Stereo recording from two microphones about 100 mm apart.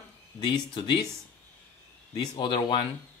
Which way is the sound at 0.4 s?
50° left (ahead or behind).